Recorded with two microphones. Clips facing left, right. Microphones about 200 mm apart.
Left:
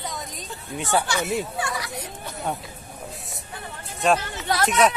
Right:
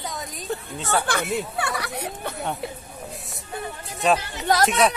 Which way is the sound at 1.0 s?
55° right (ahead or behind).